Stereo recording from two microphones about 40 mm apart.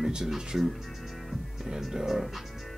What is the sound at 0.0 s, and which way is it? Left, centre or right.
Speech, centre.